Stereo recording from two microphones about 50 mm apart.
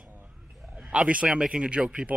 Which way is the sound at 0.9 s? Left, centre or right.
Right.